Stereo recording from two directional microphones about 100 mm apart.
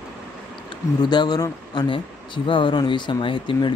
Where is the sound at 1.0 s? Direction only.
45° left (ahead or behind).